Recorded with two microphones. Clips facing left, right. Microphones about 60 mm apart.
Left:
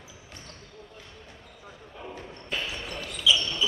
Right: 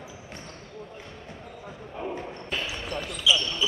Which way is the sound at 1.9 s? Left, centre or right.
Right.